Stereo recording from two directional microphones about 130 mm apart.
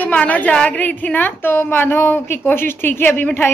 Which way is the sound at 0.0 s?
10° left (ahead or behind).